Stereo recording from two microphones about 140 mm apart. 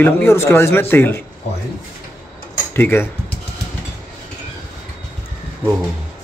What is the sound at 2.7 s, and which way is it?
Speech, 15° left (ahead or behind).